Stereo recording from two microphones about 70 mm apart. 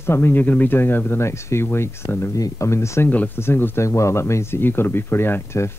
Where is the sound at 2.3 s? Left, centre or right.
Left.